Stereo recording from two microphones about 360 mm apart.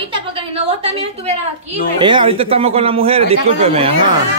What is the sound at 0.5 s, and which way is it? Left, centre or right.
Speech, centre.